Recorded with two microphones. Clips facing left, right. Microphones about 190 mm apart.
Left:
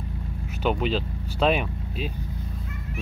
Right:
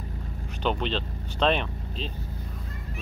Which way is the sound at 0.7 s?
5° left (ahead or behind).